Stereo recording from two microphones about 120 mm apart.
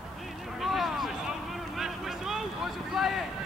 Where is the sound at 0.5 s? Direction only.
Centre (ahead or behind).